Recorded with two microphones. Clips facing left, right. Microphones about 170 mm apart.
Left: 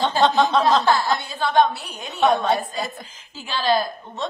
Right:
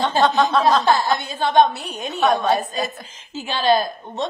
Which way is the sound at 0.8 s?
20° right (ahead or behind).